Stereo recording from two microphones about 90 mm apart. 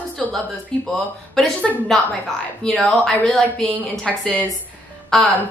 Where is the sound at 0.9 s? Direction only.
10° left (ahead or behind).